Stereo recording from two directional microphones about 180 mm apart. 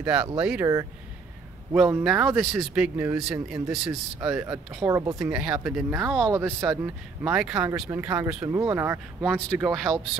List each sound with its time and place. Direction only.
0.0 s speech: 5° right (ahead or behind)
1.7 s speech: 5° right (ahead or behind)
4.8 s speech: 15° right (ahead or behind)
5.2 s speech: 5° right (ahead or behind)